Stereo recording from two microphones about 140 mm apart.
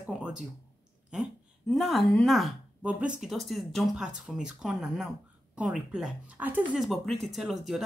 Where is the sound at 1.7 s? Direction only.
Centre (ahead or behind).